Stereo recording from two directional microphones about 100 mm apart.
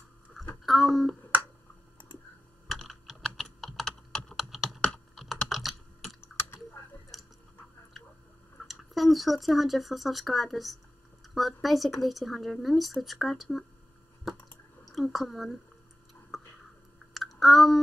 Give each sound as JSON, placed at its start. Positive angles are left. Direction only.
{"t": 0.7, "sound": "speech", "side_deg": 0}
{"t": 2.7, "sound": "computer keyboard", "side_deg": 0}
{"t": 6.2, "sound": "typing", "side_deg": 25}
{"t": 7.1, "sound": "chewing", "side_deg": 0}
{"t": 8.6, "sound": "speech", "side_deg": 0}
{"t": 14.9, "sound": "speech", "side_deg": 0}
{"t": 16.3, "sound": "a sound", "side_deg": 0}
{"t": 17.1, "sound": "clicking", "side_deg": 0}